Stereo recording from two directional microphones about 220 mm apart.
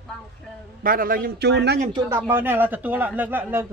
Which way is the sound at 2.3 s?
10° right (ahead or behind).